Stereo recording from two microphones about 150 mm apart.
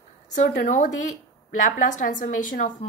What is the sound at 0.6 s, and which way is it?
Speech, 55° left (ahead or behind).